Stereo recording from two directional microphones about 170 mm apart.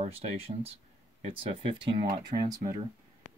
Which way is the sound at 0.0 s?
40° right (ahead or behind).